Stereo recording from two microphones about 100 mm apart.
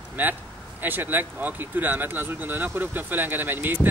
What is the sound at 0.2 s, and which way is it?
Speech, 20° right (ahead or behind).